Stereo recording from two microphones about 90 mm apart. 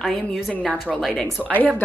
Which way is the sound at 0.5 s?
15° left (ahead or behind).